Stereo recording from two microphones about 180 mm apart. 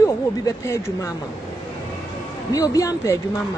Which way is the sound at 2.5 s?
20° left (ahead or behind).